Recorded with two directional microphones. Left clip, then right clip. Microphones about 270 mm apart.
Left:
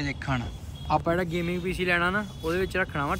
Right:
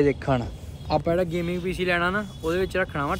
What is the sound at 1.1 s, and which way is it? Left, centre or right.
Speech, centre.